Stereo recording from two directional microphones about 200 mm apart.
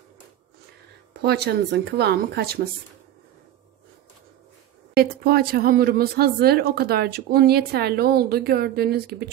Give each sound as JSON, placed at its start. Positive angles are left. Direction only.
{"t": 1.2, "sound": "speech", "side_deg": -55}
{"t": 4.9, "sound": "speech", "side_deg": -50}